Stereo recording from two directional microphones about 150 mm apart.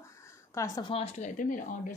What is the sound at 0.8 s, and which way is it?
Speech, 40° left (ahead or behind).